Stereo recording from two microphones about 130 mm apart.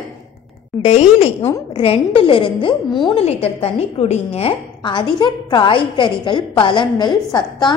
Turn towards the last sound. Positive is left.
turn(degrees=35)  # may be behind; listen again after turning